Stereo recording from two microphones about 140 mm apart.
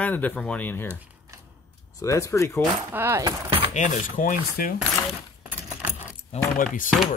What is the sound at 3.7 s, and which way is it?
Speech, 65° left (ahead or behind).